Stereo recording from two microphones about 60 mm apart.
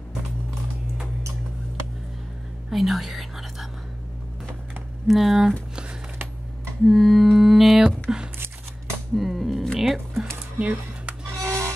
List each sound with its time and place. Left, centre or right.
2.7 s whispering: centre
5.0 s speech: centre
6.8 s mantra: centre
7.8 s a sound: centre
9.1 s music: centre
10.6 s a sound: right
11.4 s music: right